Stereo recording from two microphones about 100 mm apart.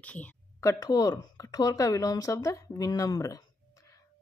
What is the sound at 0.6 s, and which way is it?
Speech, 35° left (ahead or behind).